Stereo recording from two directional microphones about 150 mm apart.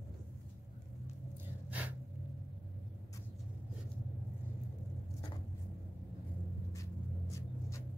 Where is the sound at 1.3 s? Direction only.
10° right (ahead or behind).